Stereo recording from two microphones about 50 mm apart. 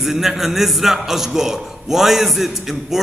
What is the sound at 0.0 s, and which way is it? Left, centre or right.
A man's voice, centre.